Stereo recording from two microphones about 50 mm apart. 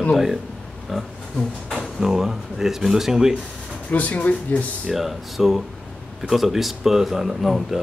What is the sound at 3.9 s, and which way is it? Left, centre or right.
Speech, left.